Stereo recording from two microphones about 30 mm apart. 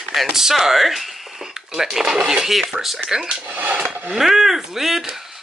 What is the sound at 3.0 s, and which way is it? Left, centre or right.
Speech, right.